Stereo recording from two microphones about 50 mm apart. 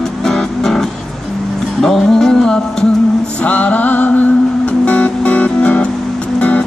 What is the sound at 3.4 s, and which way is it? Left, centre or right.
Music, left.